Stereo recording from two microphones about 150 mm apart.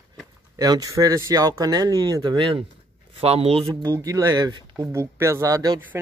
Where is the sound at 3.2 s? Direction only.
40° right (ahead or behind).